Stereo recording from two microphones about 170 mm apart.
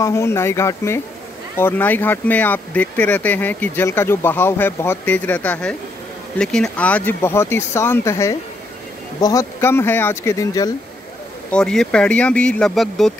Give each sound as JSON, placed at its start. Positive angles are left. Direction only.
{"t": 0.0, "sound": "speech", "side_deg": 15}
{"t": 11.5, "sound": "speech", "side_deg": 5}